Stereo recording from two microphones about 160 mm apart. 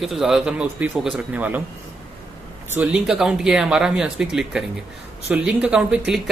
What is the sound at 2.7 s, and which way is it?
A man's voice, 5° right (ahead or behind).